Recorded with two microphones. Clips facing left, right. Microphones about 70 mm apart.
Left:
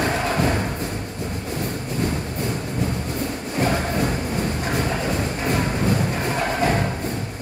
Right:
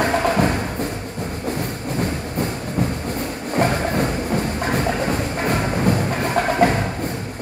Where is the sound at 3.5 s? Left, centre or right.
Right.